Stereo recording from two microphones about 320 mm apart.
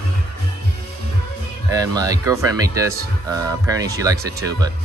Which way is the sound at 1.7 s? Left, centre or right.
Centre.